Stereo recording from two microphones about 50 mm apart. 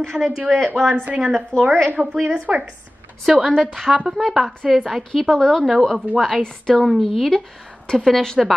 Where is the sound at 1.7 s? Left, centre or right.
Right.